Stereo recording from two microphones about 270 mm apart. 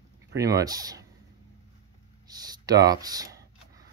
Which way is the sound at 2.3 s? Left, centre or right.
Centre.